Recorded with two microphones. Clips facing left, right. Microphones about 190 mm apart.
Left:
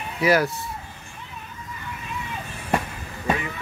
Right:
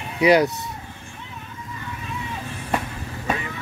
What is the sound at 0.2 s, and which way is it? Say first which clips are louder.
Speech: right 4 dB; 20° right (ahead or behind).